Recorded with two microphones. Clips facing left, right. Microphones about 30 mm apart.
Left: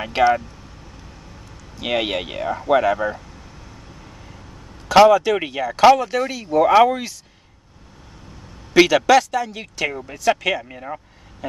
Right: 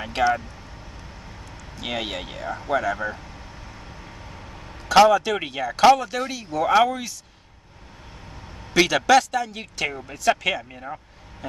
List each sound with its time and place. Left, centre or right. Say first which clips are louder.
0.0 s speech: left 5 dB; centre
1.8 s speech: left 7 dB; left
3.8 s vehicle: right 1 dB; centre
4.8 s speech: left 3 dB; centre
8.7 s speech: left 4 dB; centre